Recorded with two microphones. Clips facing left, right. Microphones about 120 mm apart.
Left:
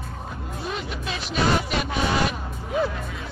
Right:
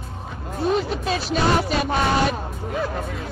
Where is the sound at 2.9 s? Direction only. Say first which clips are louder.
Right 5 dB; 55° right (ahead or behind).